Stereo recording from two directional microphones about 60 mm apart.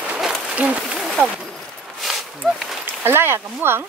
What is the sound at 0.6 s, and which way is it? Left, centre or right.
Speech, centre.